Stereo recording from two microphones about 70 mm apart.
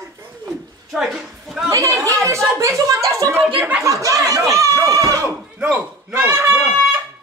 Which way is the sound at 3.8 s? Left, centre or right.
Right.